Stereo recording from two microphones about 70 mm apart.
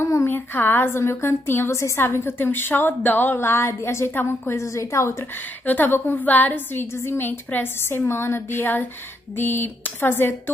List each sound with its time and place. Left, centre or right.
0.0 s a woman's voice: left
4.6 s a woman's voice: left
5.7 s a woman's voice: left